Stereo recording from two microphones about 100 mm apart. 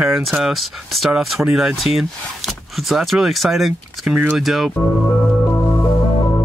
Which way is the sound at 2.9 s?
Centre (ahead or behind).